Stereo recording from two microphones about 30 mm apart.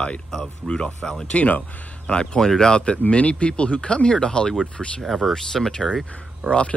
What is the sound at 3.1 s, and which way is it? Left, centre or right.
Speech, left.